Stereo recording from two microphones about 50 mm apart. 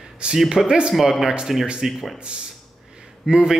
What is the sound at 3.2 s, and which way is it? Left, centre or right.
Speech, centre.